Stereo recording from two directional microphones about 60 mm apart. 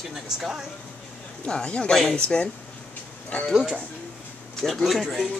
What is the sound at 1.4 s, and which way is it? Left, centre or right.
Speech, centre.